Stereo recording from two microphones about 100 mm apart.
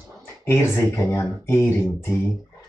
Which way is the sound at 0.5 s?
25° left (ahead or behind).